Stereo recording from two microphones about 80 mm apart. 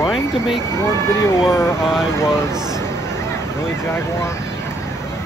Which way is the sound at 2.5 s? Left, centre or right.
Right.